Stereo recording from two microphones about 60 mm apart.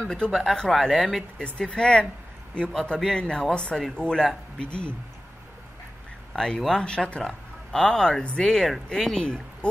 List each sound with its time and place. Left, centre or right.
0.0 s speech: centre
1.4 s speech: centre
6.3 s speech: centre